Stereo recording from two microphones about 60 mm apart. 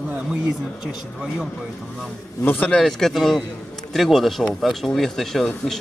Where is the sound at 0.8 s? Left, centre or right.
Centre.